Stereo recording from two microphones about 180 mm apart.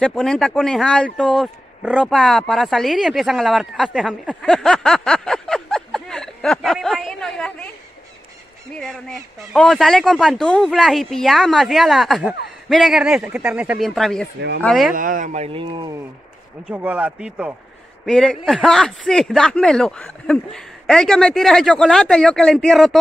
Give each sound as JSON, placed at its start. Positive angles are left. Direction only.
{"t": 0.0, "sound": "a man's voice", "side_deg": 5}
{"t": 8.7, "sound": "a man's voice", "side_deg": 5}
{"t": 15.0, "sound": "speech", "side_deg": -50}
{"t": 15.6, "sound": "speech", "side_deg": -25}
{"t": 16.6, "sound": "speech", "side_deg": -10}
{"t": 18.0, "sound": "a man's voice", "side_deg": 5}